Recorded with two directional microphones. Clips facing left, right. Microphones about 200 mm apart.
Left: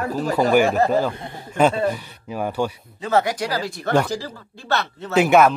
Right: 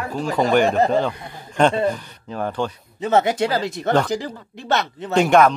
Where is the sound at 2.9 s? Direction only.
20° right (ahead or behind).